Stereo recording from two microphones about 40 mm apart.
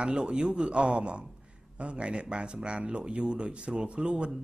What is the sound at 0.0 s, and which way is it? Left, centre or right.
Speech, right.